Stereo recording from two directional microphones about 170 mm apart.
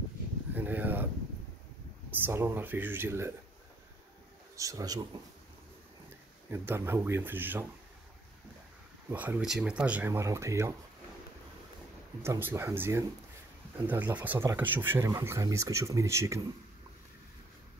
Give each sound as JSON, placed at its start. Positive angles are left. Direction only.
{"t": 0.6, "sound": "a sound", "side_deg": -10}
{"t": 2.0, "sound": "speech", "side_deg": -10}
{"t": 4.6, "sound": "speech", "side_deg": -20}
{"t": 6.5, "sound": "speech", "side_deg": -15}
{"t": 9.1, "sound": "speech", "side_deg": -10}
{"t": 12.2, "sound": "speech", "side_deg": -15}